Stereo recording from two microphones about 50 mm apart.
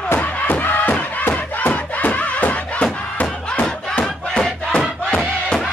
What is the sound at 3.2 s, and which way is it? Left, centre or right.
Battle cry, left.